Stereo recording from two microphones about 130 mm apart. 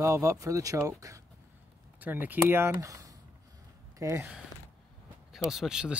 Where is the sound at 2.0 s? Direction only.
15° right (ahead or behind).